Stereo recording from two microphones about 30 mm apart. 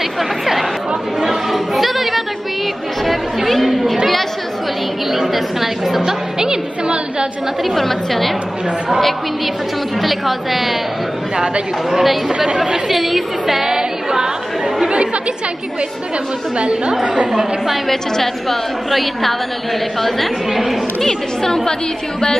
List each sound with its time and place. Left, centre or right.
1.2 s chatter: centre
5.1 s a woman's voice: centre
6.0 s music: right
7.7 s a woman's voice: centre
10.0 s a woman's voice: centre
11.3 s speech: right
11.9 s a woman's voice: centre
13.7 s a capella: centre
16.5 s a woman's voice: right
17.8 s a woman's voice: centre
21.0 s a woman's voice: centre